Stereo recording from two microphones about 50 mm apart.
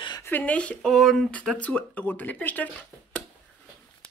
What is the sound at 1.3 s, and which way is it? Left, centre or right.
Speech, left.